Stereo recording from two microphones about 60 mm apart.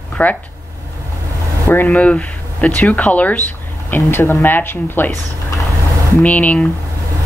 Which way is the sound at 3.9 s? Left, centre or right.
Left.